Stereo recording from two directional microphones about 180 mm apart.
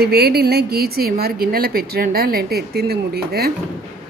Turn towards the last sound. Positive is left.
turn(degrees=-60)  # may be behind; listen again after turning